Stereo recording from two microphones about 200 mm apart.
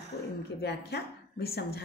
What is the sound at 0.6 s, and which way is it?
Speech, 55° left (ahead or behind).